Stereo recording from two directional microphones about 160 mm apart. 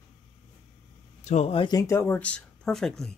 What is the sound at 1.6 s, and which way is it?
Speech, 20° left (ahead or behind).